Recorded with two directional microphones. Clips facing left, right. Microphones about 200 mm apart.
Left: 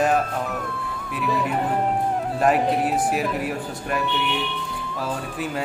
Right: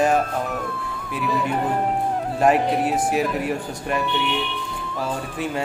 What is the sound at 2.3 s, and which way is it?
Speech, centre (ahead or behind).